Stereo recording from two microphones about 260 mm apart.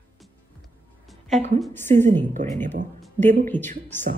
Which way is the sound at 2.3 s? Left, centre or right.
Right.